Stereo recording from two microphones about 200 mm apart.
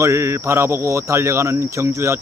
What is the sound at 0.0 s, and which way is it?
Speech, 15° right (ahead or behind).